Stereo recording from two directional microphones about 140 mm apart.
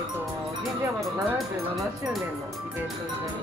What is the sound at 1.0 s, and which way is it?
Speech, centre (ahead or behind).